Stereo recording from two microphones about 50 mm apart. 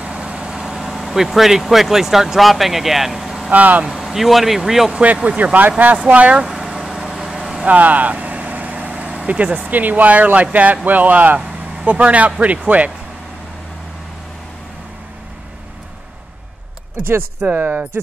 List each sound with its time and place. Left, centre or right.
0.0 s speech: right; by 3.4 s centre
3.4 s speech: right
3.8 s speech: centre
4.9 s speech: right
6.4 s vehicle: centre
7.6 s vehicle: right
9.2 s speech: right
17.5 s speech: right